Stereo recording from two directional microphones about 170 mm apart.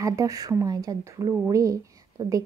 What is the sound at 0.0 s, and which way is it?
A woman's voice, 20° right (ahead or behind).